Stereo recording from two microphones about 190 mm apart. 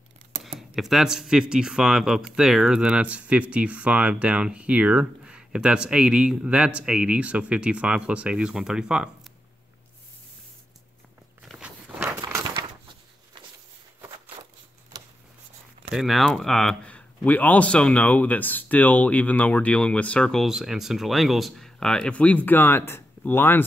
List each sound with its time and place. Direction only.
0.4 s speech: centre (ahead or behind)
11.4 s walk: 5° right (ahead or behind)
12.2 s a sound: 20° right (ahead or behind)
15.9 s speech: centre (ahead or behind)